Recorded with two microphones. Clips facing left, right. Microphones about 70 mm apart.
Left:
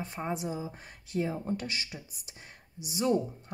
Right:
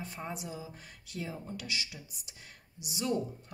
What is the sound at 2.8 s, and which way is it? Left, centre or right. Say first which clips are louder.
Speech: left 5 dB; left.